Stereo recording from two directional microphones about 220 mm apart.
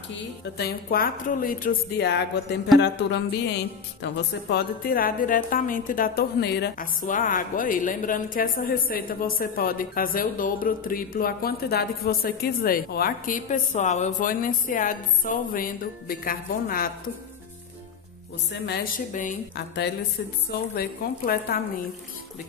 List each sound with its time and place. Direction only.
0.6 s a woman's voice: 45° left (ahead or behind)
18.5 s a woman's voice: 45° left (ahead or behind)